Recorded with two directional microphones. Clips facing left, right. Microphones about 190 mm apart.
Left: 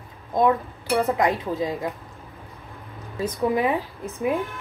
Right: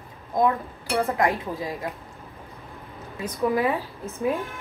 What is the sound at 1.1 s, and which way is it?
Speech, 20° left (ahead or behind).